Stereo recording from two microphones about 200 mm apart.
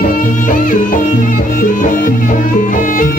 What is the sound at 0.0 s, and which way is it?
Music, 45° left (ahead or behind).